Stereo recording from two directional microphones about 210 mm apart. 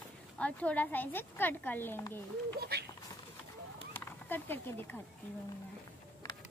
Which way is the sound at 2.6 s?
50° right (ahead or behind).